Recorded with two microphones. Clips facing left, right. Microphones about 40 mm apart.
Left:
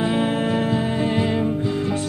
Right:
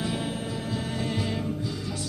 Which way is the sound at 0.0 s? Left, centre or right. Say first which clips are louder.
Left 10 dB; left.